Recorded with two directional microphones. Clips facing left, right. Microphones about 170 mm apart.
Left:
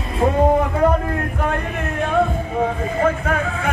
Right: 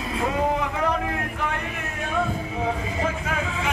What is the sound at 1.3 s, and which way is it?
Music, 50° left (ahead or behind).